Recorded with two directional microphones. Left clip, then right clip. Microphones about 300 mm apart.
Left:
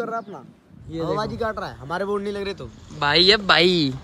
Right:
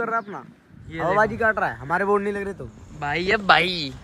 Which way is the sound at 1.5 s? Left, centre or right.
Right.